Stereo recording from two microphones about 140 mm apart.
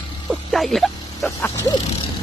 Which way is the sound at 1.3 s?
20° left (ahead or behind).